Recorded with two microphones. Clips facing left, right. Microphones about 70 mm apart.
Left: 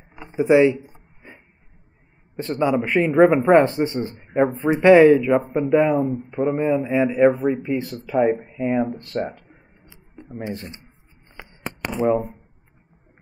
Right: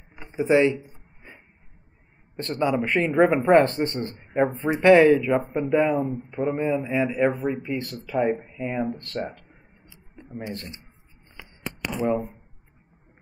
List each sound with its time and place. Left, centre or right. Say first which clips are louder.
0.2 s speech: left 4 dB; centre
2.3 s speech: left 3 dB; centre
10.1 s a sound: left 2 dB; centre
10.4 s speech: left 5 dB; centre
11.3 s a sound: left 3 dB; left
12.1 s speech: left 5 dB; centre